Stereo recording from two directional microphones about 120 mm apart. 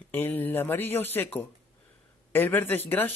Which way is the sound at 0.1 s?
15° left (ahead or behind).